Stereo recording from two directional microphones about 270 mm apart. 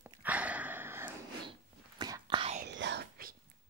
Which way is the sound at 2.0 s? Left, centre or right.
Centre.